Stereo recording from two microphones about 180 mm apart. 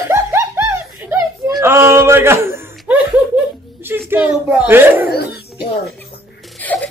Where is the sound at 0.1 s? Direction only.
15° right (ahead or behind).